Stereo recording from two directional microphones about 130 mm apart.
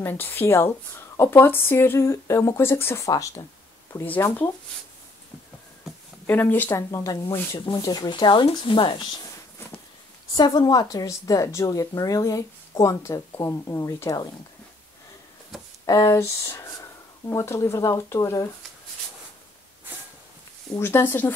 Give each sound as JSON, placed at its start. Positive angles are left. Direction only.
{"t": 0.0, "sound": "a woman's voice", "side_deg": 15}
{"t": 6.2, "sound": "speech", "side_deg": 15}
{"t": 10.3, "sound": "a woman's voice", "side_deg": 35}
{"t": 15.8, "sound": "a woman's voice", "side_deg": 25}
{"t": 20.7, "sound": "speech", "side_deg": 20}